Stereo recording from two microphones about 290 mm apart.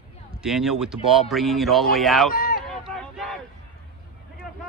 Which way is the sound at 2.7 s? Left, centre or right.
Centre.